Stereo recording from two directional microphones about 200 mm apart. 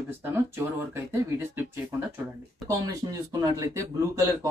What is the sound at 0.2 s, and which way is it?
Speech, 10° right (ahead or behind).